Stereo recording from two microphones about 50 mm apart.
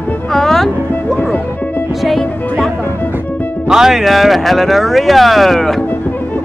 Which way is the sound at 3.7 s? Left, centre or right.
Centre.